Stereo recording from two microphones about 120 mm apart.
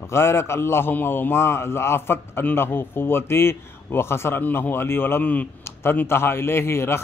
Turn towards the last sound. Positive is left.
turn(degrees=20)  # may be behind; listen again after turning